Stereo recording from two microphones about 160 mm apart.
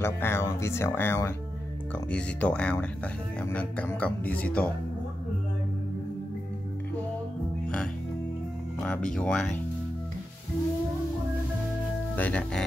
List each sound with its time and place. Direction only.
0.0 s speech: 15° left (ahead or behind)
7.6 s music: 5° left (ahead or behind)
8.8 s speech: 5° left (ahead or behind)
12.2 s speech: 5° left (ahead or behind)